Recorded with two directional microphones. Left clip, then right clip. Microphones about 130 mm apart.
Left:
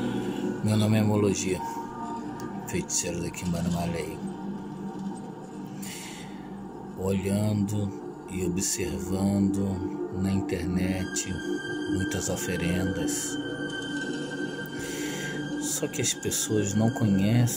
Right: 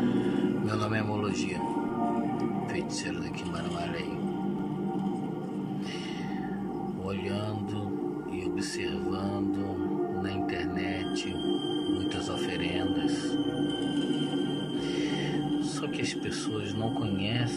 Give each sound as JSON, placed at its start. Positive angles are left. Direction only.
{"t": 0.7, "sound": "speech", "side_deg": 30}
{"t": 7.1, "sound": "speech", "side_deg": 30}
{"t": 9.1, "sound": "speech", "side_deg": 30}
{"t": 12.5, "sound": "speech", "side_deg": 30}
{"t": 16.4, "sound": "speech", "side_deg": 35}